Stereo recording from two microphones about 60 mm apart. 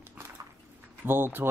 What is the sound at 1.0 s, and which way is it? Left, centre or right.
Speech, right.